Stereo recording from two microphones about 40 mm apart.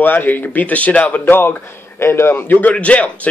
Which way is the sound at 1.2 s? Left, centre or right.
Left.